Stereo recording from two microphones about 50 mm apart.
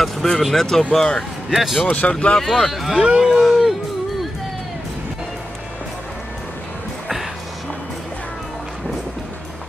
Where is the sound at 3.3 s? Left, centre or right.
Centre.